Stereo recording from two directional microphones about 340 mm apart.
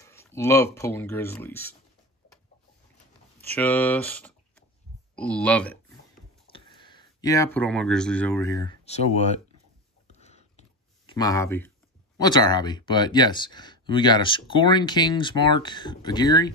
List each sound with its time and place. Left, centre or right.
0.0 s speech: centre
3.4 s speech: centre
10.0 s a sound: centre
11.1 s speech: centre